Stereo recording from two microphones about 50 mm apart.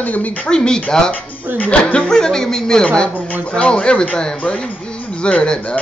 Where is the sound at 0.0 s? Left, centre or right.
Left.